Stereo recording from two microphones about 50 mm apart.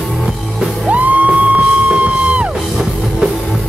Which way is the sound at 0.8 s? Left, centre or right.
Right.